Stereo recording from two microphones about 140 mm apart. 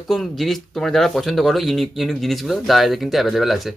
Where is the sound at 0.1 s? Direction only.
Centre (ahead or behind).